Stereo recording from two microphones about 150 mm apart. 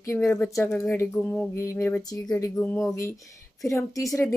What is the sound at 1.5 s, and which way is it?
A woman's voice, 15° left (ahead or behind).